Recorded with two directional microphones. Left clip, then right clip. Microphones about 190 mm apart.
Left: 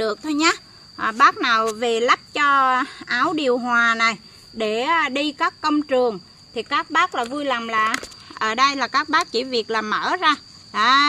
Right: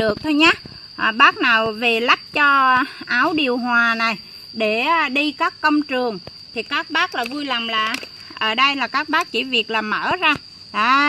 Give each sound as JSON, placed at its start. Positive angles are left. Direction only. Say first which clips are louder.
{"t": 0.0, "sound": "speech", "louder": "right 4 dB", "side_deg": -40}
{"t": 3.7, "sound": "speech", "louder": "right 1 dB", "side_deg": -20}